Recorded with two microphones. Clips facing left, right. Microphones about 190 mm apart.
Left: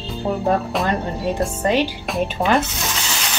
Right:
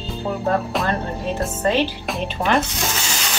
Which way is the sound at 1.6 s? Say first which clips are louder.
Even; 15° left (ahead or behind).